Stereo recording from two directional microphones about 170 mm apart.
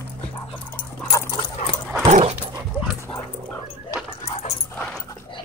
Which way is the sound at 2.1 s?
40° right (ahead or behind).